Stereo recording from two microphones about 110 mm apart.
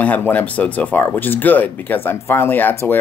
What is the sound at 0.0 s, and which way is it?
Speech, 15° left (ahead or behind).